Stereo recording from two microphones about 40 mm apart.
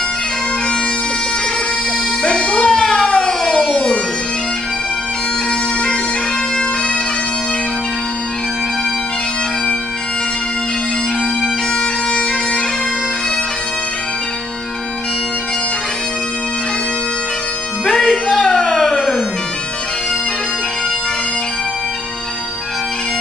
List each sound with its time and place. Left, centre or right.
2.2 s music: left
2.7 s a sound: centre
17.8 s music: centre